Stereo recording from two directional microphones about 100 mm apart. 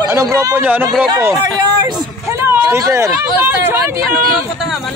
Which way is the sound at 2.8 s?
30° right (ahead or behind).